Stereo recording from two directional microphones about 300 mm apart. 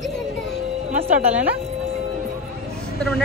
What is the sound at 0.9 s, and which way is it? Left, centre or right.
Speech, right.